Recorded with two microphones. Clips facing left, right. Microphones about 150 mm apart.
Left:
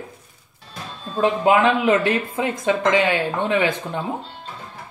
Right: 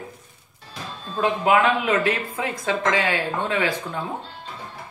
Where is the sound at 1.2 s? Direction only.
25° left (ahead or behind).